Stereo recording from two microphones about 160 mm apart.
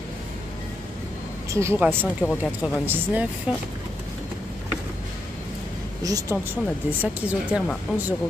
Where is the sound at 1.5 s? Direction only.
15° right (ahead or behind).